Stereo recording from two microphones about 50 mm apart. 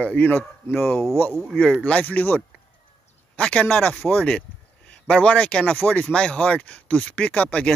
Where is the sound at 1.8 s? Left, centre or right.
Left.